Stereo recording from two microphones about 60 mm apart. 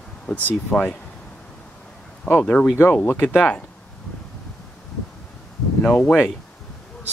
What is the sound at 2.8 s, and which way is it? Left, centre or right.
Speech, left.